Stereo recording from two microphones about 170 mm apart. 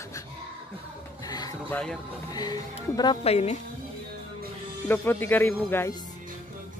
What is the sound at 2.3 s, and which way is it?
Speech, 25° left (ahead or behind).